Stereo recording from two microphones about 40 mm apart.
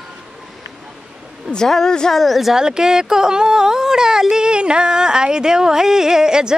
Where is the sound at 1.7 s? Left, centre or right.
Centre.